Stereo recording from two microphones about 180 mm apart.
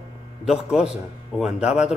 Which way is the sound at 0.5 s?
5° right (ahead or behind).